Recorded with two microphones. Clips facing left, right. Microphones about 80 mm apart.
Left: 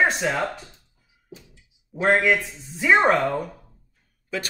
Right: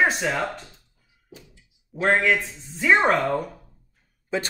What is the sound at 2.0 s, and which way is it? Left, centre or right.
Speech, centre.